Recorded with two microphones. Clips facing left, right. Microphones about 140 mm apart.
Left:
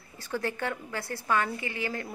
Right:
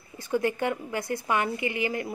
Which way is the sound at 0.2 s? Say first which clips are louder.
Right 5 dB; 15° right (ahead or behind).